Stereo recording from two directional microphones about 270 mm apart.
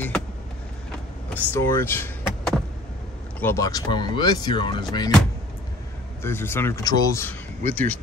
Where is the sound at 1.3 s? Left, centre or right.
Centre.